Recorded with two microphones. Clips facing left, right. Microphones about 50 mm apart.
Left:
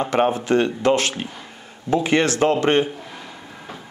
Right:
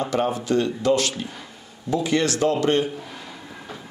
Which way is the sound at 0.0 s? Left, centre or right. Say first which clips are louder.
Left 4 dB; left.